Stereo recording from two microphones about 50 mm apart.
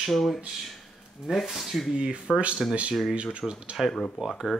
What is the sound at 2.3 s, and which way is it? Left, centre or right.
Speech, centre.